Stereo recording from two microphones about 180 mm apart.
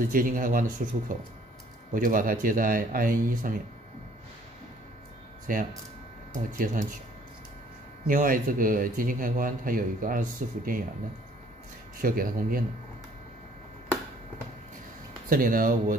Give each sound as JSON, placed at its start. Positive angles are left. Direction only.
{"t": 0.0, "sound": "speech", "side_deg": -50}
{"t": 5.5, "sound": "speech", "side_deg": -50}
{"t": 8.1, "sound": "speech", "side_deg": -50}
{"t": 12.0, "sound": "speech", "side_deg": -50}
{"t": 15.2, "sound": "speech", "side_deg": -50}